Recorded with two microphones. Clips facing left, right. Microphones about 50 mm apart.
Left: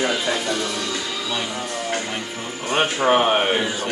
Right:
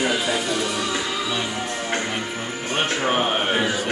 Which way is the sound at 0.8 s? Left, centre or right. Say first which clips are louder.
Right 2 dB; right.